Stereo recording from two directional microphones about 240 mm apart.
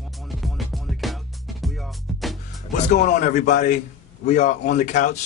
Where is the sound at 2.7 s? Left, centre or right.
Left.